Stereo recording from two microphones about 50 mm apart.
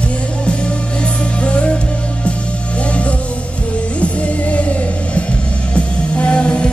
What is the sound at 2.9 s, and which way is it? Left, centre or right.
Music, left.